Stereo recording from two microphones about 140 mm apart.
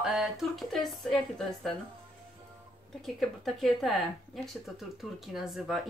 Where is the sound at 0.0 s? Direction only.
Centre (ahead or behind).